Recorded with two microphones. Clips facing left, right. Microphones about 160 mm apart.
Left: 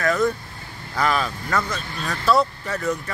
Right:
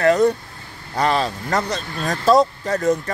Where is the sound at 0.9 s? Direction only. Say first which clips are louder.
Right 3 dB; 30° right (ahead or behind).